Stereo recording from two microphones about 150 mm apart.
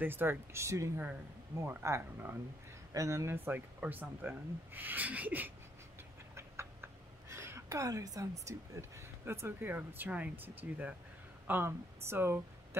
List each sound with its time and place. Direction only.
0.0 s speech: 15° right (ahead or behind)